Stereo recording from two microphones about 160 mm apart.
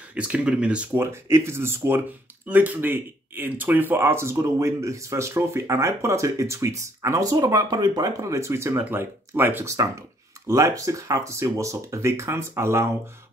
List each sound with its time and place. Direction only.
0.1 s speech: 10° right (ahead or behind)